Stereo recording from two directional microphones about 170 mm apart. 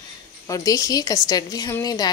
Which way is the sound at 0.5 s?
20° left (ahead or behind).